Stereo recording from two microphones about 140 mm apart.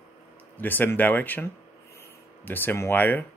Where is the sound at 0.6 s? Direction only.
15° left (ahead or behind).